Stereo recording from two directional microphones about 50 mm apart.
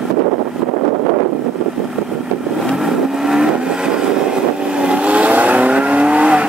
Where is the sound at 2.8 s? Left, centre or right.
Centre.